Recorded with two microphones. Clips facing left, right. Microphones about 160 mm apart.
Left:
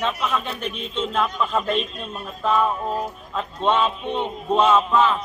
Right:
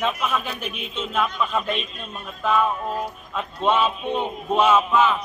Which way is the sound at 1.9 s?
35° left (ahead or behind).